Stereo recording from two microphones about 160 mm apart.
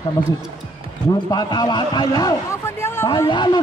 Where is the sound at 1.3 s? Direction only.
25° left (ahead or behind).